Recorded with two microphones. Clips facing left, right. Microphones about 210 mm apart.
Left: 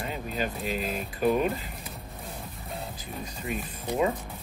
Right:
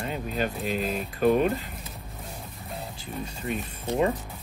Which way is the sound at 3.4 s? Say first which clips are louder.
Right 2 dB; 5° left (ahead or behind).